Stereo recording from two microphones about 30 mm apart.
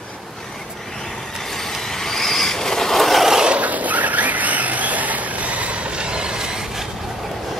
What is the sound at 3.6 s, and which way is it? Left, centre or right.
Vehicle, right.